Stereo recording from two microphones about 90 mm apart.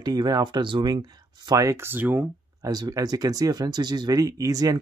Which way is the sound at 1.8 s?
25° right (ahead or behind).